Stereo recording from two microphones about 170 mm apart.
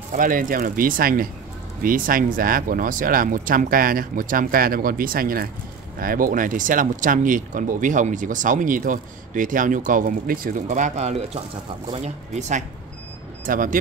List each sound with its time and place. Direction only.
0.1 s speech: 55° right (ahead or behind)